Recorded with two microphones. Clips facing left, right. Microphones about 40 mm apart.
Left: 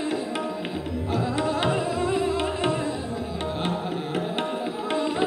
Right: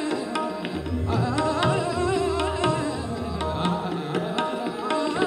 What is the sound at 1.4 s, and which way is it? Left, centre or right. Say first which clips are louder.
Music: right 2 dB; left.